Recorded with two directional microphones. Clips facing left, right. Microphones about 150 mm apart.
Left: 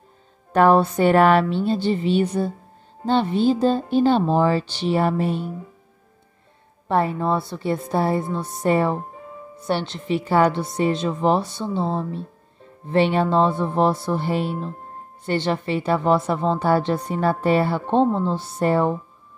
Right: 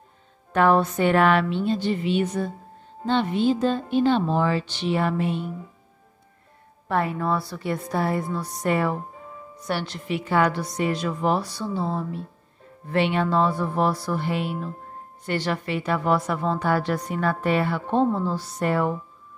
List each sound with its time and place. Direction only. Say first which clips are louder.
0.5 s speech: left 4 dB; 35° left (ahead or behind)
6.9 s a woman's voice: left 3 dB; 30° left (ahead or behind)